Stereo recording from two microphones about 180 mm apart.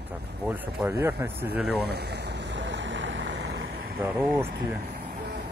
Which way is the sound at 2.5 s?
80° right.